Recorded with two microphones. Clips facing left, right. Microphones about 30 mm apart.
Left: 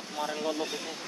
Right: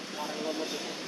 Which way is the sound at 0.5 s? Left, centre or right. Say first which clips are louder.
Left 1 dB; centre.